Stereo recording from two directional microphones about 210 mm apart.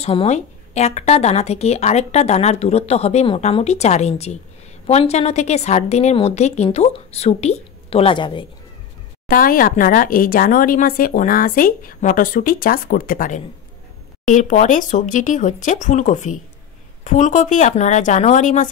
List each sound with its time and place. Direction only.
0.0 s a woman's voice: 30° left (ahead or behind)
9.3 s a woman's voice: 40° left (ahead or behind)